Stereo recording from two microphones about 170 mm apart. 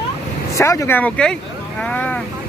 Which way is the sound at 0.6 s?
15° left (ahead or behind).